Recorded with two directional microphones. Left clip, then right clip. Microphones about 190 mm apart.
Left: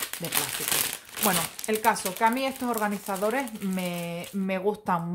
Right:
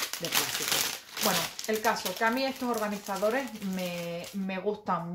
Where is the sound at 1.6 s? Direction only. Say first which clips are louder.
Left 5 dB; 45° left (ahead or behind).